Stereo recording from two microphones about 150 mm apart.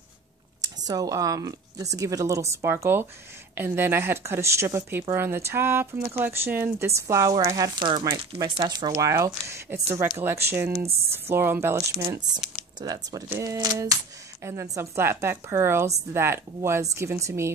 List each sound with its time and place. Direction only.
0.8 s speech: 25° right (ahead or behind)